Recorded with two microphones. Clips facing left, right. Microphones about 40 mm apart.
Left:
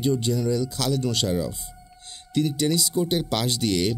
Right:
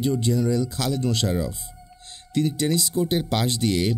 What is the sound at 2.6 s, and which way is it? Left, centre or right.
Speech, centre.